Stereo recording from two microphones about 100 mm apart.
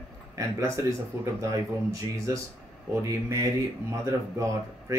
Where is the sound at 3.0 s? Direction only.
30° right (ahead or behind).